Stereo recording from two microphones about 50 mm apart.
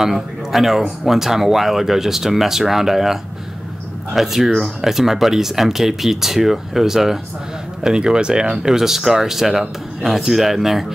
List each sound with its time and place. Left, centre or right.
0.0 s speech: centre